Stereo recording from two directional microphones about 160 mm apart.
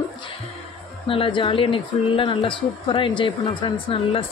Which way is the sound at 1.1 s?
30° left (ahead or behind).